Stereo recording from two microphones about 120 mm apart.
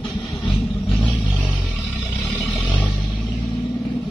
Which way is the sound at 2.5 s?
10° left (ahead or behind).